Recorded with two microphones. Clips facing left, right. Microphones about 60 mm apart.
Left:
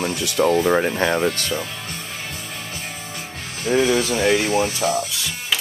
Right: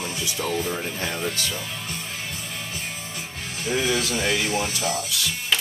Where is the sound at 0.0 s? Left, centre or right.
Left.